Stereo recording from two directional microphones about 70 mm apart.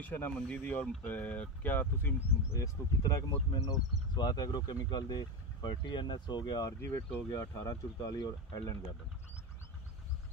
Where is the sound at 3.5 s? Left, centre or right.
Left.